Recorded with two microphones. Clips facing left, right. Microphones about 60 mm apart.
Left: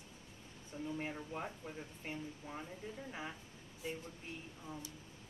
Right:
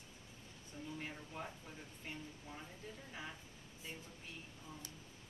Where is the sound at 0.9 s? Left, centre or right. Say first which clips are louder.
Left 4 dB; left.